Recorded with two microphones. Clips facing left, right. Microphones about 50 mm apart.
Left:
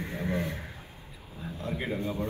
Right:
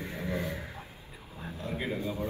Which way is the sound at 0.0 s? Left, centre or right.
Left.